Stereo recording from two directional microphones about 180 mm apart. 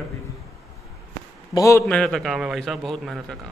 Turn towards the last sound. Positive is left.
turn(degrees=0)  # may be behind; listen again after turning